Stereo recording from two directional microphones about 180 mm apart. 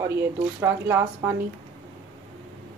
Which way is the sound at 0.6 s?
15° right (ahead or behind).